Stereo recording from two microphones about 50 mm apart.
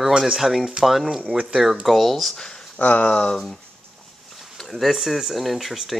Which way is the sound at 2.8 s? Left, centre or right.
Left.